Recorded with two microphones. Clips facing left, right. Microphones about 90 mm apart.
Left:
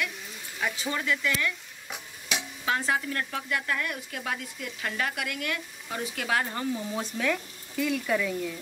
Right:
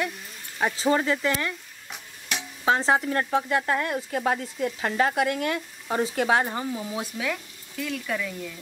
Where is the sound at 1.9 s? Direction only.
5° left (ahead or behind).